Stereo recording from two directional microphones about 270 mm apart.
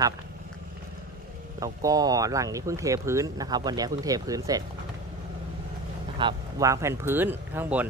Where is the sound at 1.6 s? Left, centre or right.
Centre.